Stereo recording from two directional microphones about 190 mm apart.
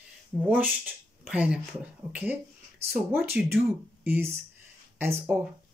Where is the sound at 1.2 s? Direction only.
5° right (ahead or behind).